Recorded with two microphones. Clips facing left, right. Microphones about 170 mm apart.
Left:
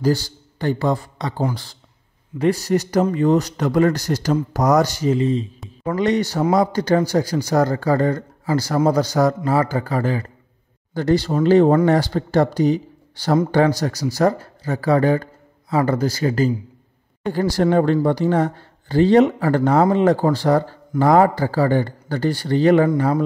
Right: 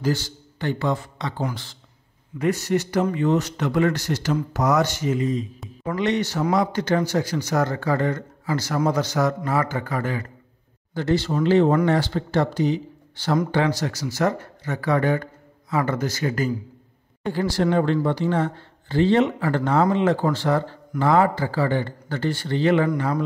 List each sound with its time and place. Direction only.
0.0 s speech: 35° left (ahead or behind)
17.3 s speech: 40° left (ahead or behind)